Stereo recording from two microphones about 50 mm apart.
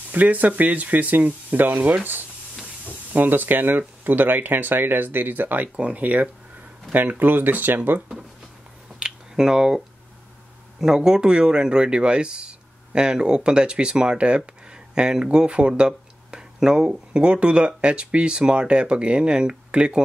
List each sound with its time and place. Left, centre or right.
0.1 s speech: right
9.0 s a sound: centre
10.8 s speech: centre